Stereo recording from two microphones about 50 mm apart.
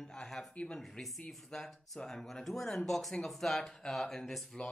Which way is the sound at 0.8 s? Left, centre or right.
Centre.